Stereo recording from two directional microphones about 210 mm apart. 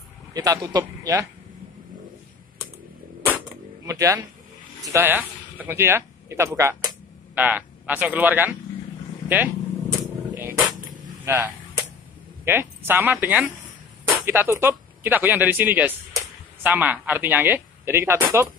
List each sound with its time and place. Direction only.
0.3 s speech: 20° right (ahead or behind)
3.8 s speech: 15° right (ahead or behind)
9.3 s a sound: 10° right (ahead or behind)
12.4 s speech: 10° right (ahead or behind)